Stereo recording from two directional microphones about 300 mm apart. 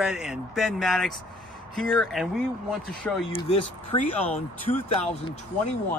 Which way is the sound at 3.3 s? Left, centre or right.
Centre.